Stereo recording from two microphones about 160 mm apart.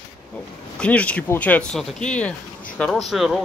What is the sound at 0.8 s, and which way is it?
Speech, 10° left (ahead or behind).